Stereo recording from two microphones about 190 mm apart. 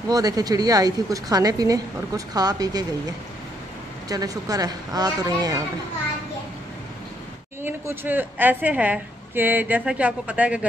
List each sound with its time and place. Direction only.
0.1 s a woman's voice: 20° right (ahead or behind)
7.6 s a woman's voice: 10° right (ahead or behind)